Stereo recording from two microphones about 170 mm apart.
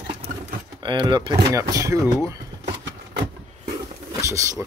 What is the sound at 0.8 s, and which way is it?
Speech, 30° right (ahead or behind).